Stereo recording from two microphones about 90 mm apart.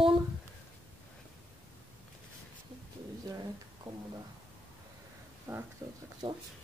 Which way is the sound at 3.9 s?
50° right (ahead or behind).